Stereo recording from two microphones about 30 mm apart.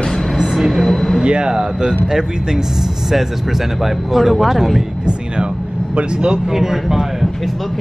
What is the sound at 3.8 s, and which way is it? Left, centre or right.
Speech, centre.